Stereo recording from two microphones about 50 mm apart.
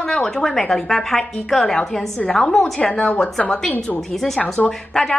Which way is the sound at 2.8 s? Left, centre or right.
Left.